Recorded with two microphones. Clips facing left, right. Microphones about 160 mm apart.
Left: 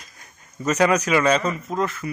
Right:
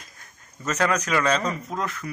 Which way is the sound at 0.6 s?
10° left (ahead or behind).